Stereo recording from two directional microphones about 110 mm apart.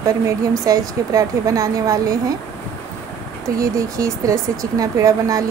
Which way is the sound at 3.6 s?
30° right (ahead or behind).